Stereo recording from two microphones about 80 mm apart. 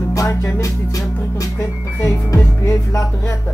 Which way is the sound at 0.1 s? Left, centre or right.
Left.